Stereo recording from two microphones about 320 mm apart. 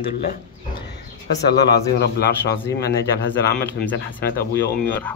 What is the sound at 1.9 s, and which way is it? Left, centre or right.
Speech, left.